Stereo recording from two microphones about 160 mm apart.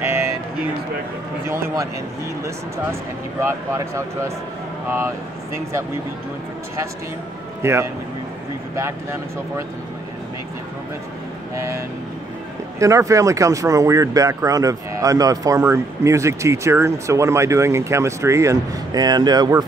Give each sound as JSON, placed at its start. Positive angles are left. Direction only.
{"t": 0.0, "sound": "a sound", "side_deg": -15}
{"t": 2.4, "sound": "speech", "side_deg": -15}
{"t": 7.6, "sound": "a man's voice", "side_deg": -15}
{"t": 12.7, "sound": "speech", "side_deg": -20}